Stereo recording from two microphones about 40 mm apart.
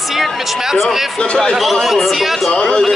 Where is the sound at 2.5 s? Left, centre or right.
Centre.